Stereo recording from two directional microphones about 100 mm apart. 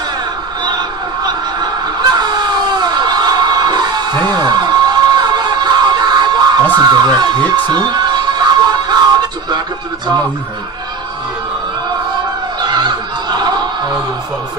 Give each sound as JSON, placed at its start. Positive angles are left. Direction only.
{"t": 1.2, "sound": "a sound", "side_deg": -45}
{"t": 7.6, "sound": "music", "side_deg": -45}
{"t": 12.6, "sound": "music", "side_deg": -45}